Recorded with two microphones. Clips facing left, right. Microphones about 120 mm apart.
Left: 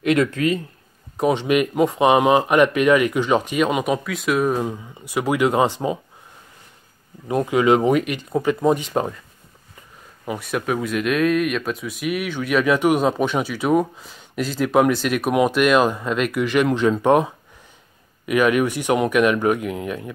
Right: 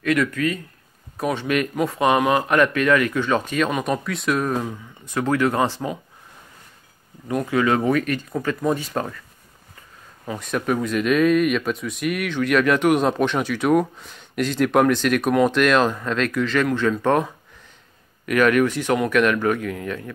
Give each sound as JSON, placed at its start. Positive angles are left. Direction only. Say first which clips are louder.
{"t": 0.0, "sound": "speech", "louder": "left 2 dB", "side_deg": 25}
{"t": 3.8, "sound": "speech", "louder": "left 1 dB", "side_deg": 5}
{"t": 7.2, "sound": "speech", "louder": "left 3 dB", "side_deg": 20}
{"t": 10.4, "sound": "speech", "louder": "right 1 dB", "side_deg": 5}